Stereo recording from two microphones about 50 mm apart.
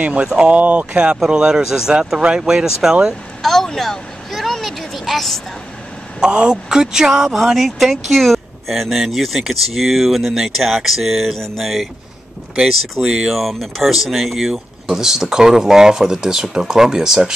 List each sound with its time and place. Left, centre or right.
0.2 s speech: centre
0.6 s speech: right
1.3 s speech: centre
3.4 s vehicle: centre
6.1 s speech: centre
13.0 s speech: centre